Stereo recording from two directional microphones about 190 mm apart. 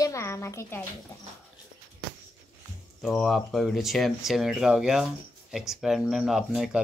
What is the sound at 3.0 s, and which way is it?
Speech, centre (ahead or behind).